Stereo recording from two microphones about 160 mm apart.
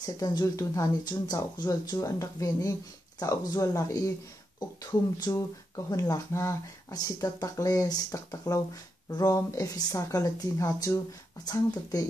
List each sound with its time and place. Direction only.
0.0 s speech: 25° left (ahead or behind)
5.2 s speech: 20° left (ahead or behind)